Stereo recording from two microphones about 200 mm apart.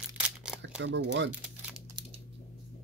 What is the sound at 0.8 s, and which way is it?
Speech, 60° right (ahead or behind).